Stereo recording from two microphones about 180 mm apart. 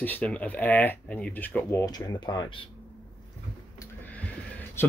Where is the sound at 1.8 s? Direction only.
20° left (ahead or behind).